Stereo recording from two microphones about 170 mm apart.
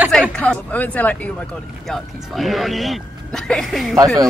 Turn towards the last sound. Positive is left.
turn(degrees=0)  # may be behind; listen again after turning